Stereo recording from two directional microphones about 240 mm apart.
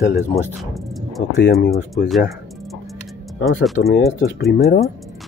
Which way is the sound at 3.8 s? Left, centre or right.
Left.